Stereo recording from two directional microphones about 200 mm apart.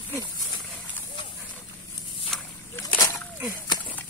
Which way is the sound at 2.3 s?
5° left (ahead or behind).